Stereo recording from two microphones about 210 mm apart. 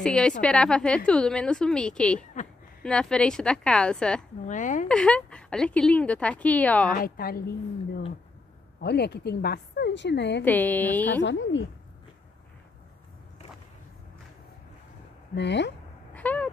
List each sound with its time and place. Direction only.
0.0 s a woman's voice: 5° left (ahead or behind)
2.4 s speech: 35° left (ahead or behind)
2.8 s a woman's voice: 5° left (ahead or behind)
4.5 s a woman's voice: 35° left (ahead or behind)
4.8 s a woman's voice: 5° left (ahead or behind)
7.0 s a woman's voice: 45° left (ahead or behind)
8.8 s a woman's voice: 50° left (ahead or behind)
10.4 s a woman's voice: 10° left (ahead or behind)
11.2 s speech: 60° left (ahead or behind)
15.3 s speech: 55° left (ahead or behind)
16.2 s a sound: 5° left (ahead or behind)